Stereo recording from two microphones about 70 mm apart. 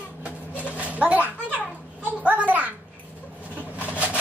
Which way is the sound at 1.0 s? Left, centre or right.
Right.